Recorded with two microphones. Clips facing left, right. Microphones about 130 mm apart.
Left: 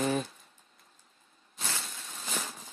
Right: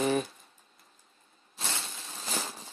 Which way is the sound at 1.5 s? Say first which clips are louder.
Right 1 dB; 25° right (ahead or behind).